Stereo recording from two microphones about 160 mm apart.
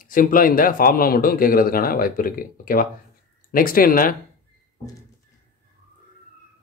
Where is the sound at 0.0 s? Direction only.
60° left (ahead or behind).